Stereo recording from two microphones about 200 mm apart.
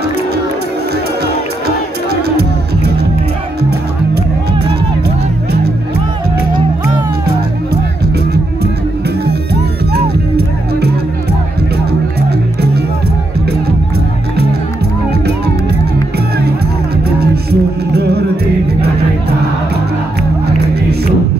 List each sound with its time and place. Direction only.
5.0 s music: 55° right (ahead or behind)
9.2 s music: 50° right (ahead or behind)
17.2 s music: 50° right (ahead or behind)